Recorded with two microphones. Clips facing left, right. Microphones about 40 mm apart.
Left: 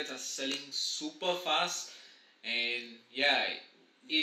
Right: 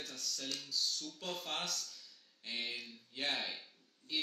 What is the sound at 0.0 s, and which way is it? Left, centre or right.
A man's voice, left.